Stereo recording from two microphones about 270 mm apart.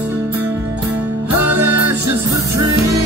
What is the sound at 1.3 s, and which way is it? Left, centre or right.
Music, right.